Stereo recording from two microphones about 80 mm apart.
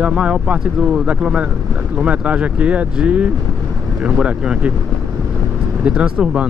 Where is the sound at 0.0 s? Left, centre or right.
Centre.